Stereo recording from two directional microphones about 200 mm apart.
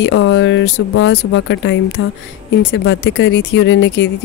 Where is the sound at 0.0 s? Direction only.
65° left (ahead or behind).